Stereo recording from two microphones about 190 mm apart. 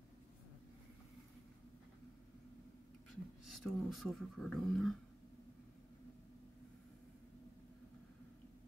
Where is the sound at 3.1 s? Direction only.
Centre (ahead or behind).